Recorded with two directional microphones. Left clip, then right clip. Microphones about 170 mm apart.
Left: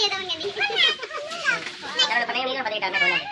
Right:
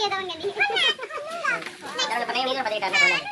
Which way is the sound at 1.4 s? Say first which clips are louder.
Left 2 dB; 15° right (ahead or behind).